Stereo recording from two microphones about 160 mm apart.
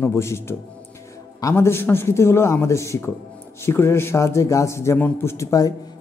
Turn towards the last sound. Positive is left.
turn(degrees=20)  # may be behind; listen again after turning